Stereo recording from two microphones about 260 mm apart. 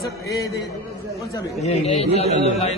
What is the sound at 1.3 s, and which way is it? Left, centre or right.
A man's voice, left.